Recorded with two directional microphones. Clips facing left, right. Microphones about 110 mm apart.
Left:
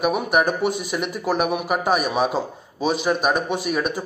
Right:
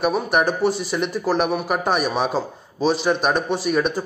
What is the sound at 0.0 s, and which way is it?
A man's voice, 5° left (ahead or behind).